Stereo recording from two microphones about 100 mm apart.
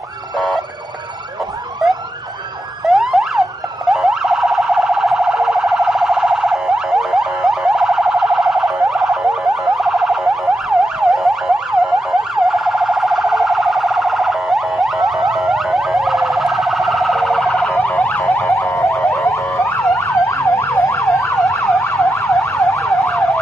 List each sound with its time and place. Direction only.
2.9 s emergency vehicle: centre (ahead or behind)
3.9 s car alarm: centre (ahead or behind)
9.8 s emergency vehicle: centre (ahead or behind)
18.3 s car alarm: 30° left (ahead or behind)
18.9 s car alarm: centre (ahead or behind)
19.2 s emergency vehicle: 30° left (ahead or behind)